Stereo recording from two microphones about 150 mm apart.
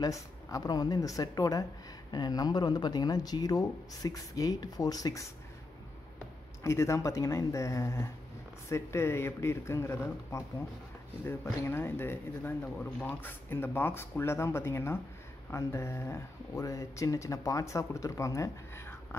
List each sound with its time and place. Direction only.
0.0 s speech: 25° left (ahead or behind)
6.6 s speech: 20° left (ahead or behind)